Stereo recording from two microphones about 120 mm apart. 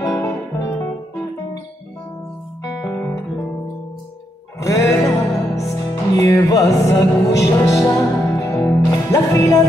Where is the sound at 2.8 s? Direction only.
25° left (ahead or behind).